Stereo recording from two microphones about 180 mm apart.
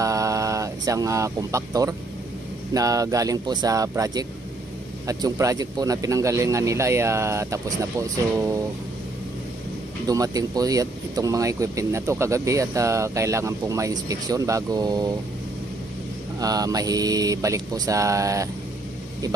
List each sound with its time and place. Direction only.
0.0 s a sound: 15° right (ahead or behind)
2.7 s speech: 20° right (ahead or behind)
10.0 s speech: 20° right (ahead or behind)
16.3 s speech: 20° right (ahead or behind)